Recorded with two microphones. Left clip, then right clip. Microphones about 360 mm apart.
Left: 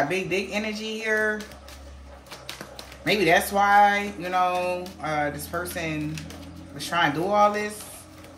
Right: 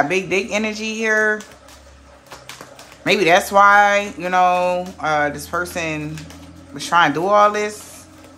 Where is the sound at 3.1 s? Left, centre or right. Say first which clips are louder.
Right 6 dB; centre.